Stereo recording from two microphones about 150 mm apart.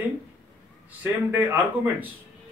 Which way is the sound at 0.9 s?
10° right (ahead or behind).